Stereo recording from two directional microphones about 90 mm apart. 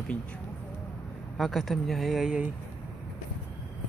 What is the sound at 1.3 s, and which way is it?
Speech, centre (ahead or behind).